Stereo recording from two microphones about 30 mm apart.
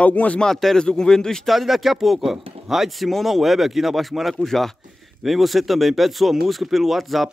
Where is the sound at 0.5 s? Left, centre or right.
Centre.